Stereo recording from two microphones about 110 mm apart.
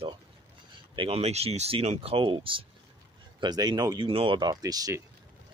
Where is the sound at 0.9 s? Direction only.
55° right (ahead or behind).